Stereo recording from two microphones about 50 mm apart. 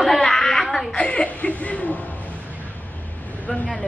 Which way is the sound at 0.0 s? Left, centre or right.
Centre.